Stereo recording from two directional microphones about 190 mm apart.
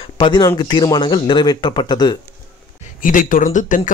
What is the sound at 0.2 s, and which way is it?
A man's voice, 20° left (ahead or behind).